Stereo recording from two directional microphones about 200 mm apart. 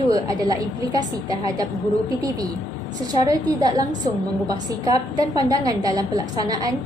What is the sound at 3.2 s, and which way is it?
A woman's voice, 20° right (ahead or behind).